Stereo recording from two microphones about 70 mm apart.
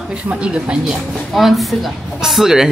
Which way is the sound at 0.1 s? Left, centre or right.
Centre.